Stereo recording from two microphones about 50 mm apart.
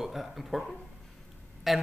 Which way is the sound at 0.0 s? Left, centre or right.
Centre.